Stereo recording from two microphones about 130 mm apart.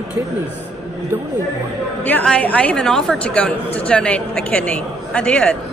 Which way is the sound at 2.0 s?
10° left (ahead or behind).